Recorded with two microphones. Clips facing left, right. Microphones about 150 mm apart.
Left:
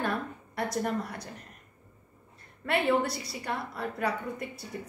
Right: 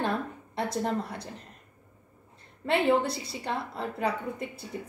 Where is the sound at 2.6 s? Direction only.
25° right (ahead or behind).